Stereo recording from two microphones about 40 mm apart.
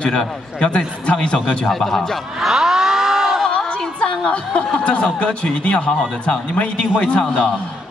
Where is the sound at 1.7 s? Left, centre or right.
Centre.